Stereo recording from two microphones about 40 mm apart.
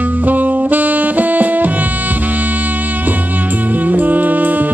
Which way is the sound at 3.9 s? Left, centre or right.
Right.